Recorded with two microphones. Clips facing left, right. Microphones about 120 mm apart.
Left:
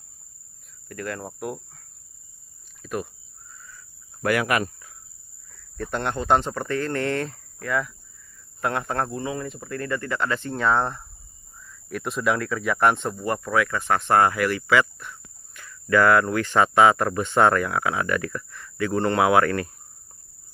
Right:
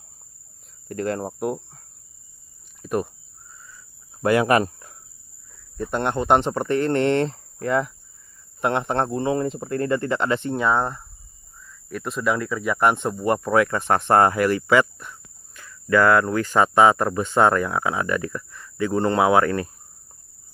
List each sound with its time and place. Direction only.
0.8 s speech: 30° right (ahead or behind)
3.7 s cricket: 25° right (ahead or behind); by 4.9 s 40° right (ahead or behind)
5.8 s speech: 20° right (ahead or behind)
10.5 s speech: 10° right (ahead or behind)
12.9 s speech: 15° right (ahead or behind); by 14.9 s 30° right (ahead or behind)
16.3 s speech: 5° right (ahead or behind)
17.7 s speech: 25° right (ahead or behind)
18.3 s speech: 10° right (ahead or behind)
19.1 s speech: 20° right (ahead or behind)